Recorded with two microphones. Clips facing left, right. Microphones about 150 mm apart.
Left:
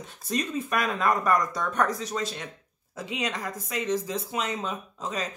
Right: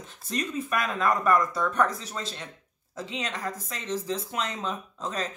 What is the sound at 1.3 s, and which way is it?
Speech, 15° left (ahead or behind).